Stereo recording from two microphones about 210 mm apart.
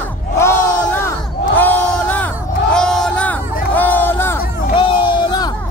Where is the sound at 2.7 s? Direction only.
5° left (ahead or behind).